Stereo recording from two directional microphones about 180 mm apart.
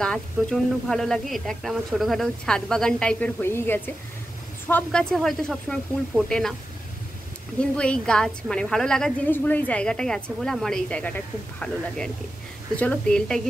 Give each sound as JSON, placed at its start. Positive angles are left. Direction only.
{"t": 0.0, "sound": "speech", "side_deg": 5}
{"t": 7.7, "sound": "speech", "side_deg": 5}
{"t": 12.7, "sound": "speech", "side_deg": 10}